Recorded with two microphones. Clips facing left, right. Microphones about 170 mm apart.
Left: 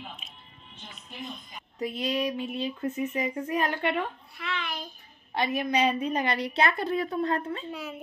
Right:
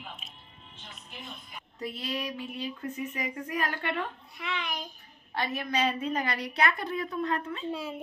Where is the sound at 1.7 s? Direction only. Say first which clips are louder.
Left 6 dB; 15° left (ahead or behind).